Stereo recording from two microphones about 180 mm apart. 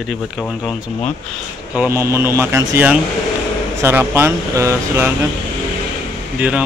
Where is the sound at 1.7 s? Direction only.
10° right (ahead or behind).